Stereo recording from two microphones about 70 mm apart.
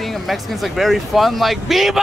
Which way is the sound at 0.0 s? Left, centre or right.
Centre.